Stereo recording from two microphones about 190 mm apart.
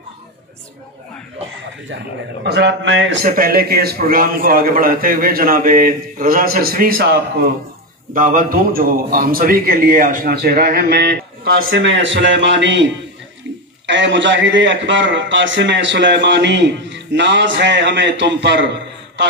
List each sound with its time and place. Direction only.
2.4 s a man's voice: 60° right (ahead or behind)
3.3 s a man's voice: 50° right (ahead or behind)
8.1 s a man's voice: 45° right (ahead or behind)
11.7 s a man's voice: 75° right (ahead or behind)
13.8 s a man's voice: 70° right (ahead or behind)